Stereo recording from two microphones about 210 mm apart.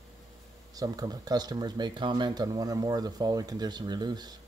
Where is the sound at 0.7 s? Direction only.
20° right (ahead or behind).